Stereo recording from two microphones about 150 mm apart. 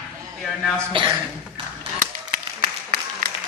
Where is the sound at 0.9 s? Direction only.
35° right (ahead or behind).